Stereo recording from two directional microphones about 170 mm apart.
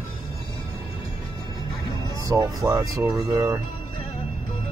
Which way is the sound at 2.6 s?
10° right (ahead or behind).